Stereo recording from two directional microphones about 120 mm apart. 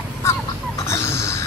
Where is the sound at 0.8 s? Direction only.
25° left (ahead or behind).